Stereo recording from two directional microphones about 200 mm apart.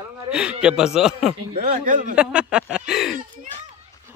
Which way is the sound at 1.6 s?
45° right (ahead or behind).